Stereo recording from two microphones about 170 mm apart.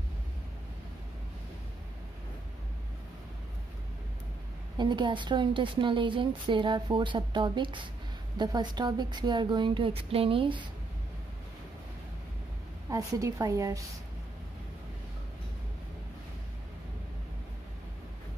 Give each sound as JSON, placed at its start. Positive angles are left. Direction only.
{"t": 4.7, "sound": "a woman's voice", "side_deg": -25}
{"t": 12.9, "sound": "a woman's voice", "side_deg": -20}